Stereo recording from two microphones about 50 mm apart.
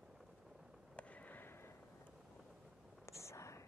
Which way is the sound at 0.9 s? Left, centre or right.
Left.